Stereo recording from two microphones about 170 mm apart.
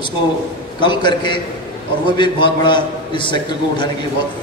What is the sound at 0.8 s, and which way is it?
A man's voice, 25° left (ahead or behind).